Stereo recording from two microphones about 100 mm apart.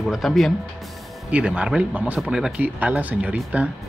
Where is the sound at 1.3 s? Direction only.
15° right (ahead or behind).